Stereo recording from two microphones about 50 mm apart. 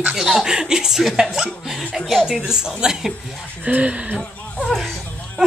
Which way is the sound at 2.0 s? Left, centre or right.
Centre.